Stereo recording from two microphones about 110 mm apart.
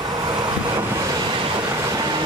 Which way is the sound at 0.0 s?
35° right (ahead or behind).